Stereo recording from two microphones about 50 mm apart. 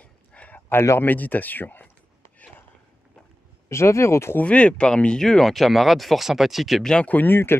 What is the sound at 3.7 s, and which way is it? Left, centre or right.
Speech, left.